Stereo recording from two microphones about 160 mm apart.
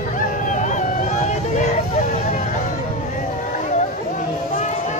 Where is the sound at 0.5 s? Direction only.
50° left (ahead or behind).